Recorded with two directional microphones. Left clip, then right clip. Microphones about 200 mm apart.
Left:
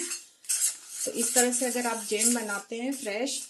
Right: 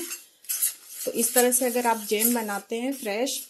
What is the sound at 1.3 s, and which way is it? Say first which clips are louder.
Sizzle: right 5 dB; 35° right (ahead or behind).